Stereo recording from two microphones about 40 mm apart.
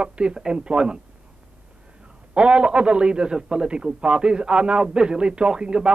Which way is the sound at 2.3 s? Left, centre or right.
Right.